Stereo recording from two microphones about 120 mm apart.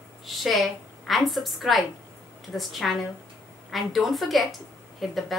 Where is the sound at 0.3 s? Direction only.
Centre (ahead or behind).